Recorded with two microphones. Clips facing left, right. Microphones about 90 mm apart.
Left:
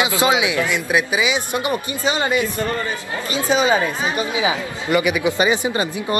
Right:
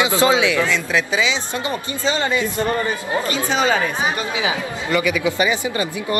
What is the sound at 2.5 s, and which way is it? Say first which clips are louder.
Speech: right 2 dB; 25° right (ahead or behind).